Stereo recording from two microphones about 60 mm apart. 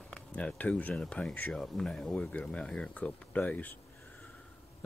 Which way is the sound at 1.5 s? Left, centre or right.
Centre.